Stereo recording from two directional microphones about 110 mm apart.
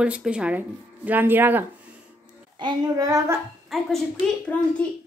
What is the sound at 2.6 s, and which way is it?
Child singing, 45° right (ahead or behind).